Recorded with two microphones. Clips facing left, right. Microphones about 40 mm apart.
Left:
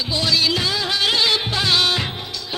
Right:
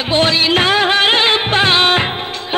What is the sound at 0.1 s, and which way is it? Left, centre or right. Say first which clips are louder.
Music: right 7 dB; right.